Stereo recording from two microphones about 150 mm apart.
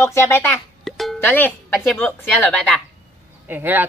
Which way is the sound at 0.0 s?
20° left (ahead or behind).